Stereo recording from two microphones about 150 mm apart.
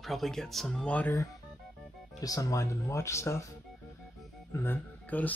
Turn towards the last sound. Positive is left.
turn(degrees=10)  # may be behind; listen again after turning